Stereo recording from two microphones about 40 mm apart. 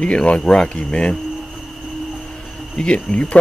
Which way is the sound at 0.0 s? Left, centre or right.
Left.